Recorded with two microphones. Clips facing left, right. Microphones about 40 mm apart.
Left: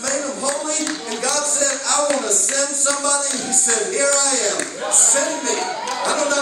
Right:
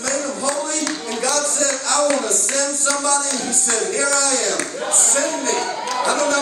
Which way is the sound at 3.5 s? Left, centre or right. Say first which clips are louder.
Left 3 dB; left.